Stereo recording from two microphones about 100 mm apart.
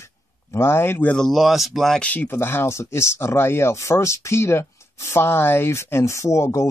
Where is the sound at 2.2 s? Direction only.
25° left (ahead or behind).